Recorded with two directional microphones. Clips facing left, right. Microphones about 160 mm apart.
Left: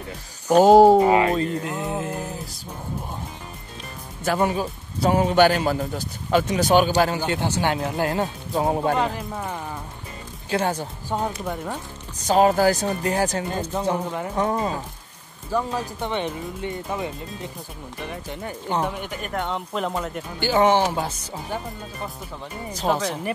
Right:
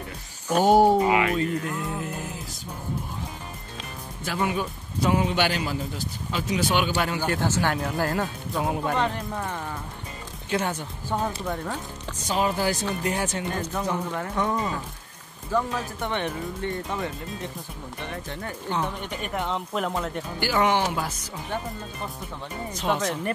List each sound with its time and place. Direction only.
0.7 s speech: 90° left
1.0 s speech: 35° left (ahead or behind)
4.2 s a man's voice: 45° left (ahead or behind)
7.2 s speech: 20° left (ahead or behind)
8.9 s speech: 5° left (ahead or behind)
10.5 s speech: 35° left (ahead or behind)
11.4 s speech: 10° left (ahead or behind)
12.2 s speech: 45° left (ahead or behind)
13.9 s speech: 10° left (ahead or behind)
14.3 s speech: 30° left (ahead or behind)
15.5 s speech: 15° left (ahead or behind)
18.9 s speech: 5° left (ahead or behind)
20.3 s speech: 25° left (ahead or behind)
22.7 s speech: 35° left (ahead or behind)